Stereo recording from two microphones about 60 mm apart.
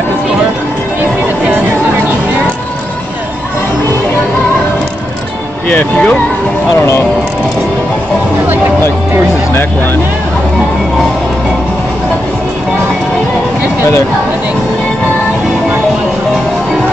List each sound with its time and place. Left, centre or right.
5.7 s speech: left